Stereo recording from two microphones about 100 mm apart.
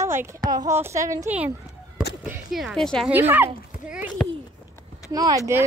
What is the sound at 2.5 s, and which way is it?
Speech, centre (ahead or behind).